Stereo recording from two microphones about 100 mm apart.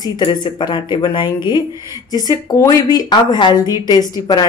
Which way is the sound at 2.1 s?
40° left (ahead or behind).